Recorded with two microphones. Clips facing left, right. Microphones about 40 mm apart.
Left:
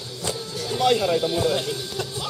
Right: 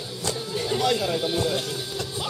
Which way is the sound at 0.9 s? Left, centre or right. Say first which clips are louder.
Left 4 dB; centre.